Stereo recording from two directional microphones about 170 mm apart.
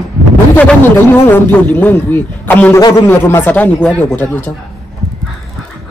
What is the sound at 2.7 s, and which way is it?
Speech, 25° left (ahead or behind).